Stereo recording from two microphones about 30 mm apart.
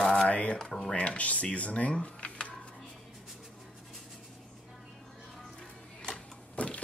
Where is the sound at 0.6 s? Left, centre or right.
Centre.